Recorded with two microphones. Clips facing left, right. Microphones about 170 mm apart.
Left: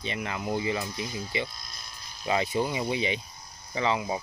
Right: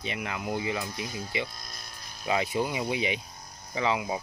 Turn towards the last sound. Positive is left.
turn(degrees=-5)  # may be behind; listen again after turning